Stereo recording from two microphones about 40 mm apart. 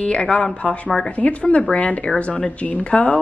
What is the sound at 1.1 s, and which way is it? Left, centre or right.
A woman's voice, left.